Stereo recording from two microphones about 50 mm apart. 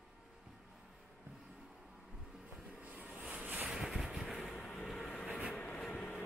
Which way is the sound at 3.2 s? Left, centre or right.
Right.